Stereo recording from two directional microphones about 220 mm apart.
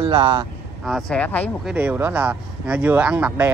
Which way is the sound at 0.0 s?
20° right (ahead or behind).